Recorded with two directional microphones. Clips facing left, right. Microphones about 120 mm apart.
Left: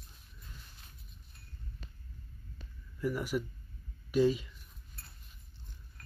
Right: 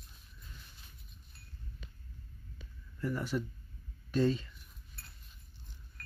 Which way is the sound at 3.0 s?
10° left (ahead or behind).